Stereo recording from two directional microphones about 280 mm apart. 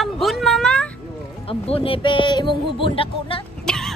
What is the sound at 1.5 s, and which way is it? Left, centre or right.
Speech, centre.